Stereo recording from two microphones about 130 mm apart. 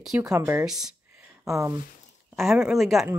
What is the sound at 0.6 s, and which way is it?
Speech, 5° right (ahead or behind).